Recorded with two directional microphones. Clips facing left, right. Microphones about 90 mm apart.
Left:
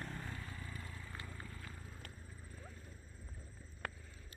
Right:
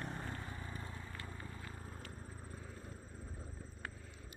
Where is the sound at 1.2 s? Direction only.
25° right (ahead or behind).